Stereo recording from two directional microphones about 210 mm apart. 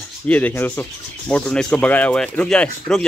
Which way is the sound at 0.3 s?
10° left (ahead or behind).